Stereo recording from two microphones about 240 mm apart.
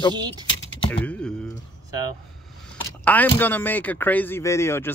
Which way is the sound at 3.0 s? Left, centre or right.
Centre.